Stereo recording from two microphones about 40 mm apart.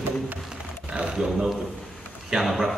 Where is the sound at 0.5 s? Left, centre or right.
Centre.